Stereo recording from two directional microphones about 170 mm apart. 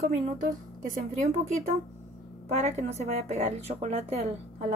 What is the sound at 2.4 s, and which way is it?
Speech, 40° right (ahead or behind).